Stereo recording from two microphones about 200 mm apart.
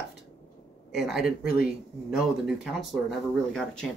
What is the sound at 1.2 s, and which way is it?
Speech, 45° left (ahead or behind).